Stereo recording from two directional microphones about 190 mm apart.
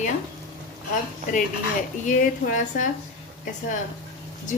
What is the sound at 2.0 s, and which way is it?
Speech, 45° left (ahead or behind).